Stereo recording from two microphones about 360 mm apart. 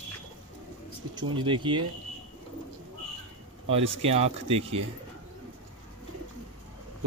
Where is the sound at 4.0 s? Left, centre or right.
Centre.